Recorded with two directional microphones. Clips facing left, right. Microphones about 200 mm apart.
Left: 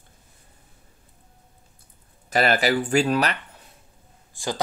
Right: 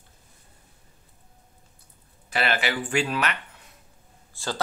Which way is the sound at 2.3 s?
40° left (ahead or behind).